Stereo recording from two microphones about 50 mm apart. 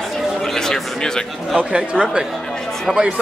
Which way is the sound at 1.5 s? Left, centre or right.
Right.